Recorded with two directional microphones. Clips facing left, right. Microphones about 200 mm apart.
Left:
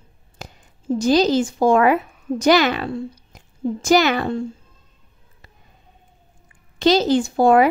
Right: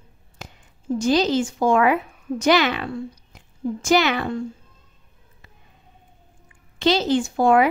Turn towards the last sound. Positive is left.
turn(degrees=35)  # may be behind; listen again after turning